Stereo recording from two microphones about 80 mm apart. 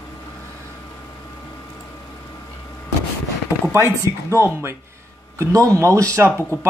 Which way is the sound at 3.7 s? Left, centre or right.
Right.